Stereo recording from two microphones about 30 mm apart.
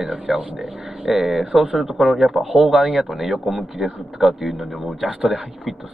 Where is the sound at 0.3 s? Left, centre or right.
Centre.